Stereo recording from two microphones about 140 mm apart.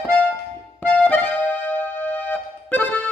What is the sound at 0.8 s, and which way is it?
Music, 10° left (ahead or behind).